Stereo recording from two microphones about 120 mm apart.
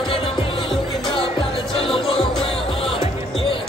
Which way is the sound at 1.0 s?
50° left (ahead or behind).